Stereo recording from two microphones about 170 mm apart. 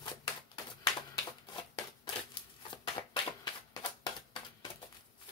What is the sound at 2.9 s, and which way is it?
Shuffling cards, 25° left (ahead or behind).